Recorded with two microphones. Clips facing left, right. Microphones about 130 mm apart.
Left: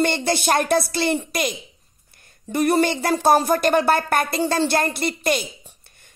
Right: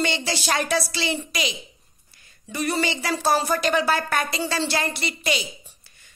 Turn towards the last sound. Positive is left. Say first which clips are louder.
# left 4 dB
turn(degrees=55)  # may be behind; listen again after turning